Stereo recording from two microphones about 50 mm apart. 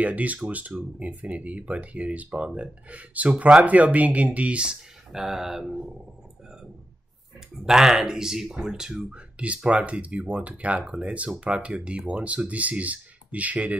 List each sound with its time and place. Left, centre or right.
0.0 s speech: right
5.1 s speech: centre
7.6 s speech: centre
9.7 s speech: right